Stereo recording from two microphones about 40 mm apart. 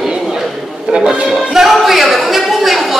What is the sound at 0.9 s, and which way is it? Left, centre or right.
Music, right.